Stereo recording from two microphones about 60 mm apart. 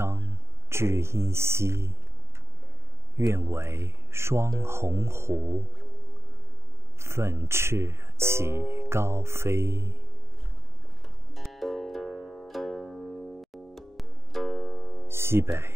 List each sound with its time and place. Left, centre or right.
0.0 s speech: right
3.2 s speech: right
7.0 s speech: right
11.3 s music: centre
13.7 s music: centre
14.5 s music: centre
15.0 s speech: right